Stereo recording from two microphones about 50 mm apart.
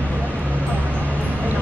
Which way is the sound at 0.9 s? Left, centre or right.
Right.